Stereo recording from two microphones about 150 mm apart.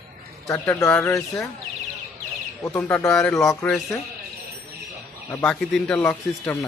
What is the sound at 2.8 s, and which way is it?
A man's voice, 10° left (ahead or behind).